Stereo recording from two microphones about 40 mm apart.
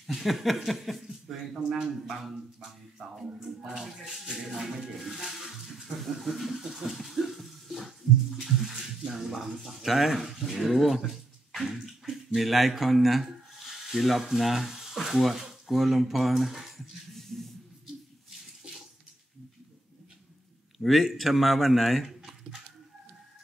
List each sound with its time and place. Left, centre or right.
0.0 s a sound: centre
1.6 s speech: right
3.0 s music: centre
4.9 s a sound: centre
8.7 s music: centre
9.8 s a sound: centre
12.4 s speech: centre
18.6 s bathtub: right
20.8 s speech: centre